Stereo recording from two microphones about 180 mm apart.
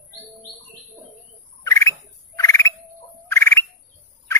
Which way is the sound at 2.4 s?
15° left (ahead or behind).